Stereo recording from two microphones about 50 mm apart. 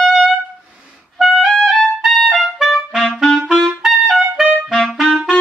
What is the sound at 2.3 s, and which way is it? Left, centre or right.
Clarinet, centre.